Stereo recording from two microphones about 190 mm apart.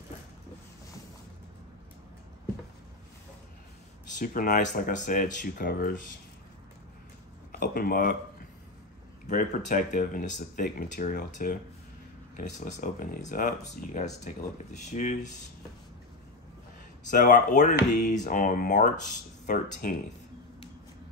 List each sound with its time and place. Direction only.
4.2 s speech: 45° left (ahead or behind)
7.5 s speech: 50° left (ahead or behind)
9.3 s speech: 45° left (ahead or behind)
17.1 s speech: 45° left (ahead or behind)